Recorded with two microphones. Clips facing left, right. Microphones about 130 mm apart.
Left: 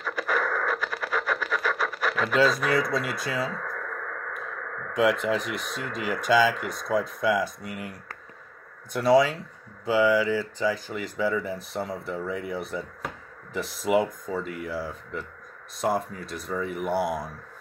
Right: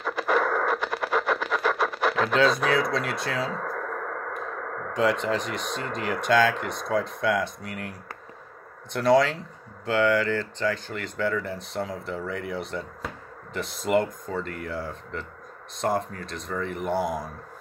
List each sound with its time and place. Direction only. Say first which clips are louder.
0.0 s radio: right 4 dB; 25° right (ahead or behind)
2.2 s speech: left 1 dB; centre (ahead or behind)
3.5 s radio: right 4 dB; 30° right (ahead or behind)
5.2 s speech: even; 5° left (ahead or behind)
8.9 s speech: even; 5° left (ahead or behind)